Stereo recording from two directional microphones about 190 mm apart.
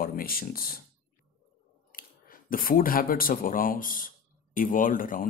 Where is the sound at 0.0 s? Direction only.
50° left (ahead or behind).